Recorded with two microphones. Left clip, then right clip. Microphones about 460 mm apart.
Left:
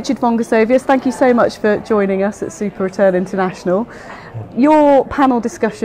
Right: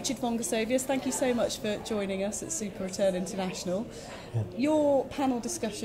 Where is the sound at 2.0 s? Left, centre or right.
Left.